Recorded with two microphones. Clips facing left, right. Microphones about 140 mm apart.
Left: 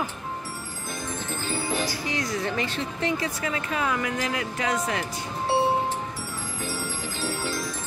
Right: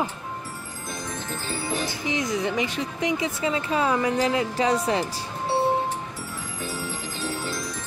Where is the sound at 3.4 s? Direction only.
25° right (ahead or behind).